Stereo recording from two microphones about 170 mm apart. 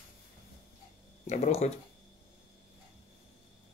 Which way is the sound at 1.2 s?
40° left (ahead or behind).